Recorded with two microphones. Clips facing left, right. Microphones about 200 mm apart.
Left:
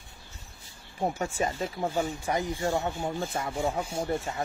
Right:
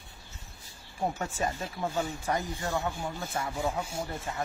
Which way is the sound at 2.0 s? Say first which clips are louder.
Left 2 dB; 15° left (ahead or behind).